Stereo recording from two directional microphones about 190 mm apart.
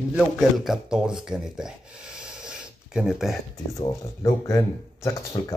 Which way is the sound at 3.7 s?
15° left (ahead or behind).